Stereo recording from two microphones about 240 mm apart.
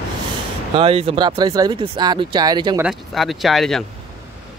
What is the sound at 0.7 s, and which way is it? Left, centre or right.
Speech, right.